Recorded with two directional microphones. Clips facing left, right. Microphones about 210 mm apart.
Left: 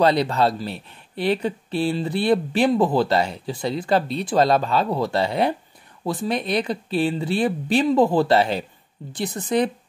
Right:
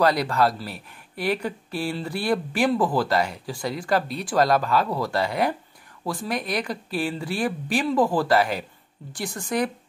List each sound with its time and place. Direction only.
0.0 s speech: 25° left (ahead or behind)